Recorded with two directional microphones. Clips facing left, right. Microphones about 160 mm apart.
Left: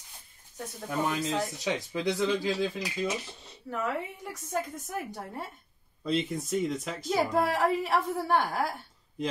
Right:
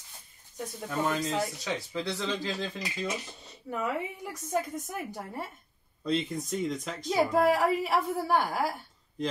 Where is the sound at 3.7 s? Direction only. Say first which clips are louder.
Even; 10° right (ahead or behind).